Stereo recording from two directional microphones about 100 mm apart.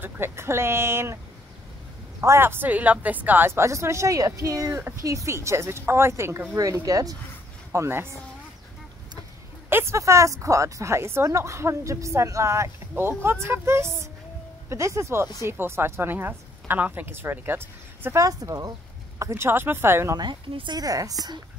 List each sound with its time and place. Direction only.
0.0 s a woman's voice: 25° right (ahead or behind)
7.7 s a woman's voice: 25° right (ahead or behind)
9.7 s a woman's voice: 25° right (ahead or behind)
20.2 s a woman's voice: 55° right (ahead or behind); by 21.4 s 40° right (ahead or behind)